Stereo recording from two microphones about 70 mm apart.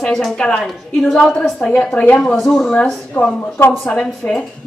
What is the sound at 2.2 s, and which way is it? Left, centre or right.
A woman's voice, centre.